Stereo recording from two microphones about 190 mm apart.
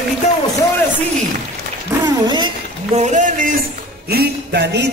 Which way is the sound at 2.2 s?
25° right (ahead or behind).